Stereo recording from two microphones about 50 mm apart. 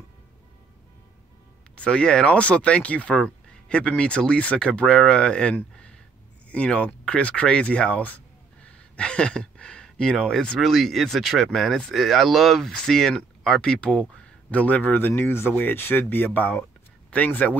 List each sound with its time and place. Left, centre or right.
1.8 s speech: centre; by 15.5 s left
15.5 s speech: left